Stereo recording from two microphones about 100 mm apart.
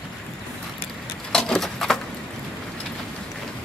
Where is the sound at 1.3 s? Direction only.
5° left (ahead or behind).